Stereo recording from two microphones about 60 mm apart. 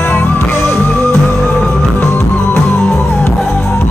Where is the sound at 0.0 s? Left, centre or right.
Left.